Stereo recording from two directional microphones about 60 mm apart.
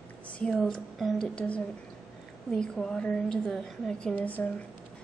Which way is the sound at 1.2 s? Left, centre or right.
Centre.